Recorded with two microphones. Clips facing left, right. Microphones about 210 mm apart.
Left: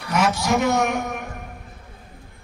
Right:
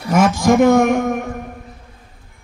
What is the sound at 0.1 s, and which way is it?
A man's voice, 50° right (ahead or behind).